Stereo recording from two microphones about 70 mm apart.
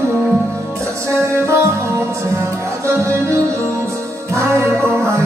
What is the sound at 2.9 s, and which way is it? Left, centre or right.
Music, right.